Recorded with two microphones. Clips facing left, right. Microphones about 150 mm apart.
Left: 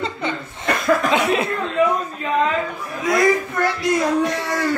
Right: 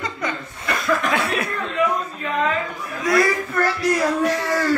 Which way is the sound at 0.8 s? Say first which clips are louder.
Left 4 dB; 20° left (ahead or behind).